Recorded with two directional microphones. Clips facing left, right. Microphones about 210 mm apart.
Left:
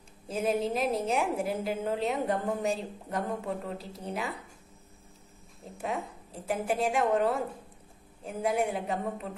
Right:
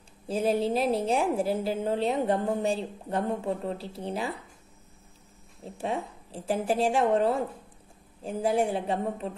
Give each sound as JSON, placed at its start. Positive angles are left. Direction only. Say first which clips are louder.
{"t": 0.3, "sound": "a woman's voice", "louder": "right 3 dB", "side_deg": -30}
{"t": 5.8, "sound": "a woman's voice", "louder": "right 3 dB", "side_deg": -30}